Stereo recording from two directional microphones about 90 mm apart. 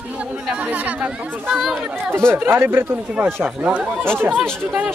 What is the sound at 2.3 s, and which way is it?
Speech, 25° right (ahead or behind).